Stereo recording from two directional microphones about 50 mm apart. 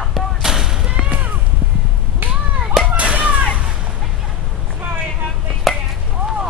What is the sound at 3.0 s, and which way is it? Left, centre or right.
Whip, right.